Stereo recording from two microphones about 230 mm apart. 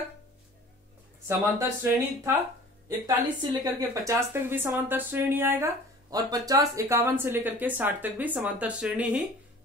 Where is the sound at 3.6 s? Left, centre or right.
Centre.